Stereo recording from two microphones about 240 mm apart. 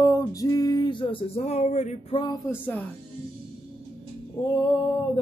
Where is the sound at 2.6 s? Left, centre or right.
Centre.